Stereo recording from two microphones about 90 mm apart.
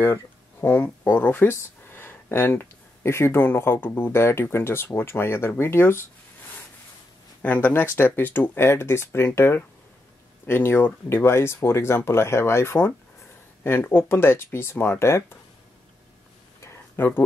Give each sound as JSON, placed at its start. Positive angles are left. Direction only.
{"t": 0.0, "sound": "speech", "side_deg": 25}
{"t": 7.4, "sound": "speech", "side_deg": 20}
{"t": 16.6, "sound": "a sound", "side_deg": 30}